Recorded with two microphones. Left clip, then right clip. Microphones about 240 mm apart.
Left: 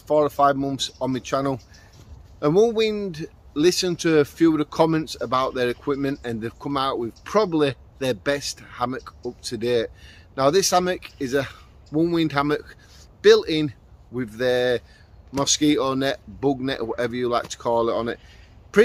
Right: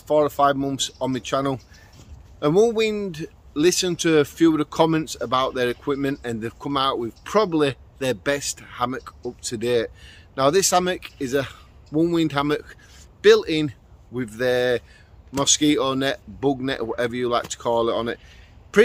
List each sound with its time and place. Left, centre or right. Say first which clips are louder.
0.1 s speech: even; centre